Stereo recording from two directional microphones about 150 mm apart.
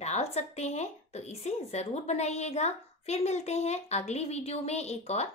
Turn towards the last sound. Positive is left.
turn(degrees=45)  # may be behind; listen again after turning